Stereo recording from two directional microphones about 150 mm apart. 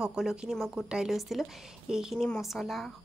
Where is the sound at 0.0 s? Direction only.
5° right (ahead or behind).